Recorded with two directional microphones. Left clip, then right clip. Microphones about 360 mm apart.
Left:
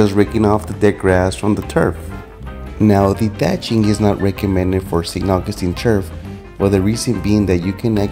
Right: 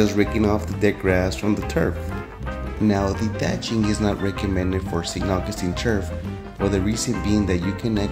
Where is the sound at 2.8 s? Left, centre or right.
Left.